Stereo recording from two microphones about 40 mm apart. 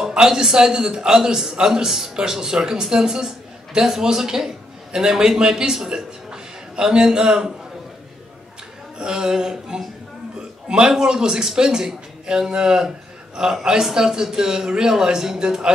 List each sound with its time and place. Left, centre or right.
0.1 s a man's voice: centre
8.9 s a man's voice: centre
10.3 s a sound: right
10.9 s a man's voice: centre